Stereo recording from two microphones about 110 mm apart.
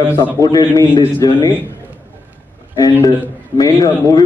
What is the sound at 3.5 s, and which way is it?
Speech, 35° left (ahead or behind).